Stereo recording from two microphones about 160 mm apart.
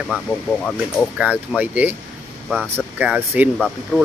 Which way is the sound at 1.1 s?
10° right (ahead or behind).